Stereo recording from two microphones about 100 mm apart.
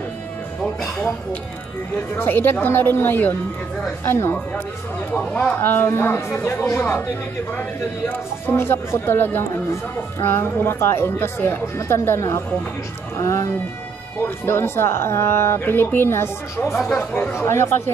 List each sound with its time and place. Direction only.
2.1 s speech: 20° left (ahead or behind)
8.1 s speech: 20° left (ahead or behind)